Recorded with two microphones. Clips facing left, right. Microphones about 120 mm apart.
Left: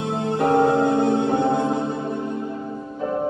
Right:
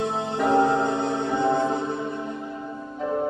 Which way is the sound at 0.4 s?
50° left (ahead or behind).